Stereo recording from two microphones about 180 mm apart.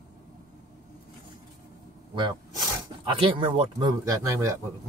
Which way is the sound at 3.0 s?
30° right (ahead or behind).